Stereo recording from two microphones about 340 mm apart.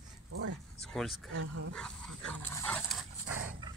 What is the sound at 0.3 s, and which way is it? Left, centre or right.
Dog, right.